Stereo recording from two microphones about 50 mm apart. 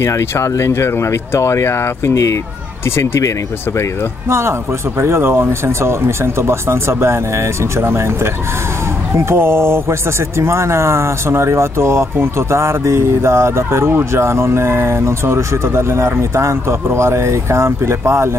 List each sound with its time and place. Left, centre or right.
0.0 s speech: left
4.3 s speech: right